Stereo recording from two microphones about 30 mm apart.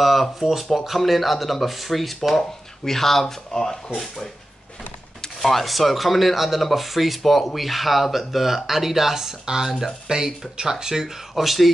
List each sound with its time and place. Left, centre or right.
0.0 s speech: centre
2.3 s speech: centre
5.4 s speech: centre
10.0 s speech: right
11.3 s speech: centre